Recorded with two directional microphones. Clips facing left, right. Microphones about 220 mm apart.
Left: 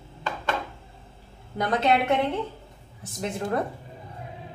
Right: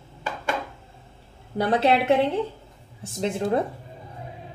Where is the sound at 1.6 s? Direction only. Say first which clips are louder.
Right 3 dB; 30° right (ahead or behind).